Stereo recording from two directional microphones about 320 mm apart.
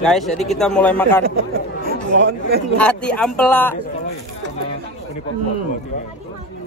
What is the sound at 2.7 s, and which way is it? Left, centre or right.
Speech, centre.